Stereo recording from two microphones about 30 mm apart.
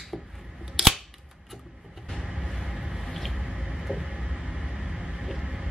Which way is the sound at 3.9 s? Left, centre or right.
Right.